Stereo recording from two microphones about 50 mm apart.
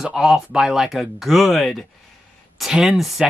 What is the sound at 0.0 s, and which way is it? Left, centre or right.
Speech, centre.